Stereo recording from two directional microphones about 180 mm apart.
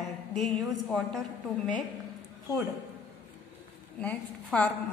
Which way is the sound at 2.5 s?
20° left (ahead or behind).